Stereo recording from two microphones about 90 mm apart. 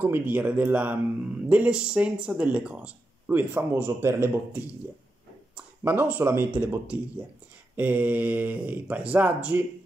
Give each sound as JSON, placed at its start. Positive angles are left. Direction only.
{"t": 0.0, "sound": "speech", "side_deg": -20}